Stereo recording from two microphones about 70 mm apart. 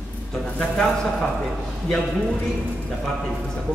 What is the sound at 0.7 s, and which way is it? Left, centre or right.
Speech, centre.